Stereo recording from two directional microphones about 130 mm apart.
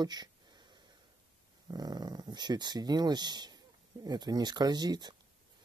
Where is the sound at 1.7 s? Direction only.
30° right (ahead or behind).